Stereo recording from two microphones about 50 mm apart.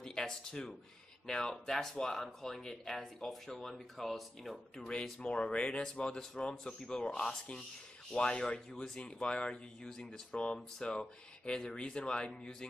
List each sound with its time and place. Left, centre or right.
0.0 s speech: centre
5.2 s speech: centre